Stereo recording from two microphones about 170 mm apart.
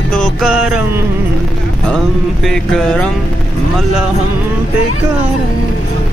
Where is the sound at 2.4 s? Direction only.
5° left (ahead or behind).